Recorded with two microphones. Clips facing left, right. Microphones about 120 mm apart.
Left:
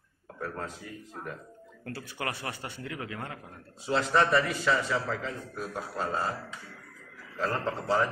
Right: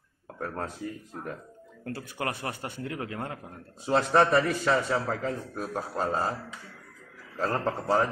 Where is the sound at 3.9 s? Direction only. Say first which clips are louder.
Right 3 dB; 45° right (ahead or behind).